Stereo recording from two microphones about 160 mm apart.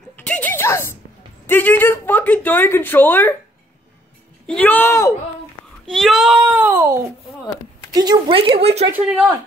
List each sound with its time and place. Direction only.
0.1 s a sound: 10° left (ahead or behind)
1.5 s speech: 10° left (ahead or behind)
4.5 s speech: 10° left (ahead or behind)
5.9 s speech: centre (ahead or behind)
6.6 s a woman's voice: 15° right (ahead or behind)
8.4 s speech: 35° right (ahead or behind)